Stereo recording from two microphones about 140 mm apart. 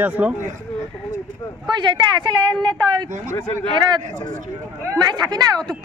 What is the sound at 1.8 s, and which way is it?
A woman's voice, 30° right (ahead or behind).